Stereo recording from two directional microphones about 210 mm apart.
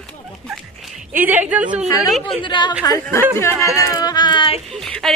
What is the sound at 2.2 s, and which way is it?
A woman's voice, 20° left (ahead or behind).